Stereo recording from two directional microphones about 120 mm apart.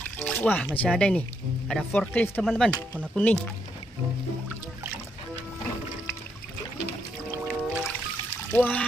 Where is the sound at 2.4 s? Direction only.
5° right (ahead or behind).